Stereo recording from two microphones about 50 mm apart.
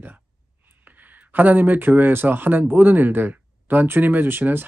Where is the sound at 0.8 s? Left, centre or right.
Right.